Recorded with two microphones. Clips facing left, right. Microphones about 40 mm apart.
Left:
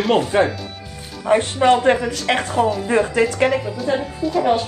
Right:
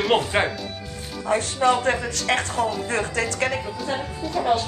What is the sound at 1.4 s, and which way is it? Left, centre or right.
Speech, left.